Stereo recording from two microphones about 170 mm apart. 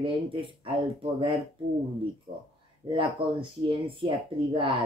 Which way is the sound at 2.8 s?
30° right (ahead or behind).